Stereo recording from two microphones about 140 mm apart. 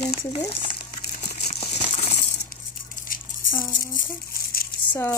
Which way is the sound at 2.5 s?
80° left.